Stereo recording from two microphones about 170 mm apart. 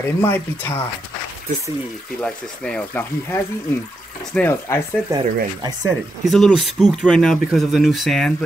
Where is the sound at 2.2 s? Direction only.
5° left (ahead or behind).